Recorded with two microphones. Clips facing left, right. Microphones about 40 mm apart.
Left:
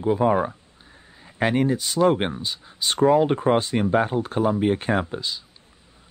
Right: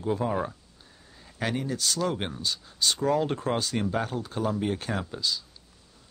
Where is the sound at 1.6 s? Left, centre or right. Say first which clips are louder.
Left 9 dB; left.